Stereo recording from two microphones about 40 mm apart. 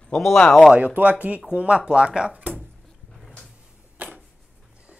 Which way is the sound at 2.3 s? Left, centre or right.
Right.